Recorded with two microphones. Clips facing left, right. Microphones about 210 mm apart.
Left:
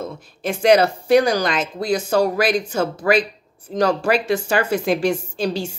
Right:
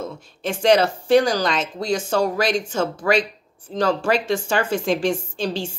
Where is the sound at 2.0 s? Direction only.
40° left (ahead or behind).